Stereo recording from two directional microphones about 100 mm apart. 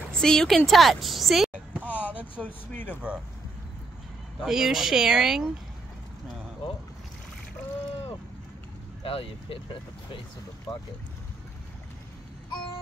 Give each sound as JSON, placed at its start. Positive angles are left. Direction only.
{"t": 0.1, "sound": "a woman's voice", "side_deg": 5}
{"t": 1.9, "sound": "a sound", "side_deg": 20}
{"t": 2.4, "sound": "speech", "side_deg": -5}
{"t": 2.7, "sound": "speech", "side_deg": 20}
{"t": 4.4, "sound": "speech", "side_deg": -5}
{"t": 9.0, "sound": "speech", "side_deg": 70}